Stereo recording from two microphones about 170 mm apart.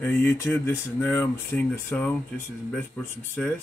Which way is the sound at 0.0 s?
10° left (ahead or behind).